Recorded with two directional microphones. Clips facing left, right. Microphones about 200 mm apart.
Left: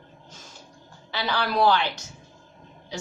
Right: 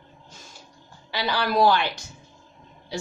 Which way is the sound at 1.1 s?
10° right (ahead or behind).